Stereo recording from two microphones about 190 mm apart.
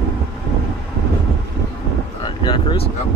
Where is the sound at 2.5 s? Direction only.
25° left (ahead or behind).